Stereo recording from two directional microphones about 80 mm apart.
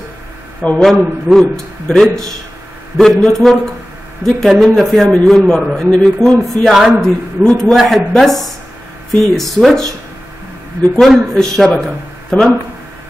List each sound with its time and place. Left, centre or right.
0.6 s speech: centre
1.3 s a man's voice: right
2.0 s a man's voice: centre
11.0 s speech: centre